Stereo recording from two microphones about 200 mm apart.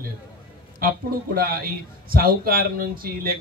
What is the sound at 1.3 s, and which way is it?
Speech, 45° right (ahead or behind).